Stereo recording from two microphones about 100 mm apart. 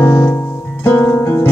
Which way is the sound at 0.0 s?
25° left (ahead or behind).